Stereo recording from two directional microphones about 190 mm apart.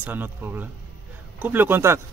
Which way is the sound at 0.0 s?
10° right (ahead or behind).